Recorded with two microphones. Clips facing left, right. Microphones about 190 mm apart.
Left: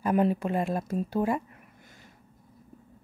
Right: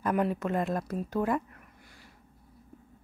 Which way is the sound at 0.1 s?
20° left (ahead or behind).